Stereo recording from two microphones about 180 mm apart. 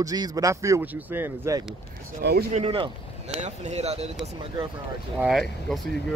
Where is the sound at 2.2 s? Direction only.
65° right (ahead or behind).